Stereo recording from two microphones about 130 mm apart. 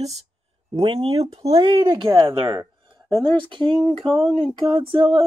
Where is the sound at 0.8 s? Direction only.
40° right (ahead or behind).